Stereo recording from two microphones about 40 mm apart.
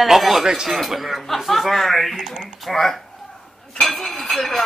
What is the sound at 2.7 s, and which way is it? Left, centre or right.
Speech, centre.